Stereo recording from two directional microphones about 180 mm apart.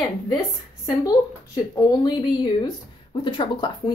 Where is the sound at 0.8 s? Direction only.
20° left (ahead or behind).